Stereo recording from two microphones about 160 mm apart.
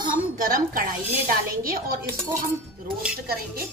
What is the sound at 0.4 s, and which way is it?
A woman's voice, 60° right (ahead or behind).